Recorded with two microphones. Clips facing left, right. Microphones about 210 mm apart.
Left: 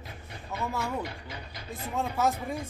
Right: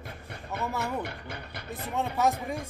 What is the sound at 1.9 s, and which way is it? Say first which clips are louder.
Speech: right 1 dB; centre (ahead or behind).